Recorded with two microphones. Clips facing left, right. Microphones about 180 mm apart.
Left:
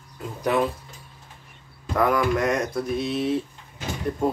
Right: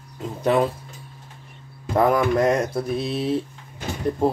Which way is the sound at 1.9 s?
30° right (ahead or behind).